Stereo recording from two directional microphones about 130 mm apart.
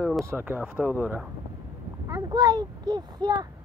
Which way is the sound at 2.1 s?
30° right (ahead or behind).